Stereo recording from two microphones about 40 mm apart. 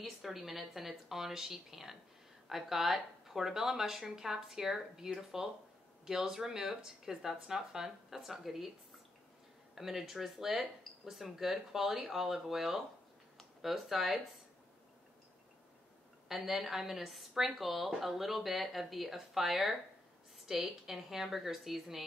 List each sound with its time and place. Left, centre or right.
0.0 s speech: centre
9.8 s speech: centre
16.3 s speech: centre